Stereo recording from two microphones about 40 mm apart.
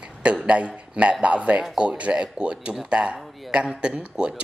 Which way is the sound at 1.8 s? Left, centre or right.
Right.